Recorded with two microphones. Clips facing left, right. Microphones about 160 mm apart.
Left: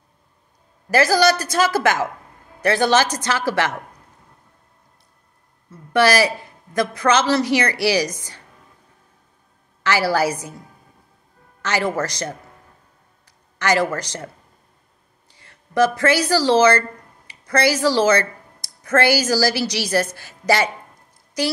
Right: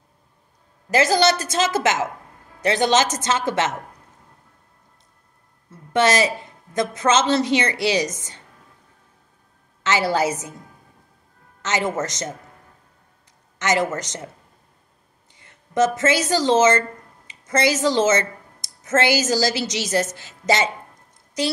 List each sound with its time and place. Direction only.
0.8 s a woman's voice: 20° right (ahead or behind)
5.7 s a man's voice: 25° right (ahead or behind)
9.8 s a woman's voice: 20° right (ahead or behind)
11.6 s a woman's voice: 20° right (ahead or behind)
13.6 s a woman's voice: 20° right (ahead or behind)
15.3 s speech: 20° right (ahead or behind)